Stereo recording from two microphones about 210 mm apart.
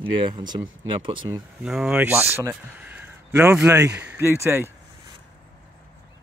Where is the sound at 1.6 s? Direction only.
5° right (ahead or behind).